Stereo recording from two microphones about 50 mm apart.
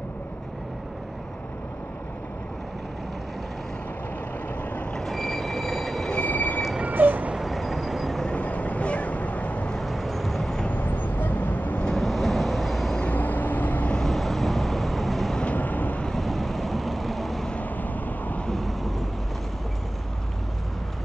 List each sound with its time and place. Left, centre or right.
5.0 s train: centre
6.1 s train: left
6.9 s vehicle: right
7.3 s vehicle: centre
8.3 s vehicle: left
9.8 s vehicle: centre
10.7 s vehicle: left
12.0 s vehicle: centre
13.1 s vehicle: left
13.9 s vehicle: centre
15.4 s vehicle: left
16.2 s vehicle: centre
17.6 s vehicle: left
18.5 s vehicle: centre